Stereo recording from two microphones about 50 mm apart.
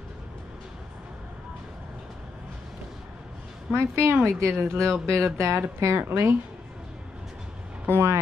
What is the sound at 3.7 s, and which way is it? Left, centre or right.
Speech, right.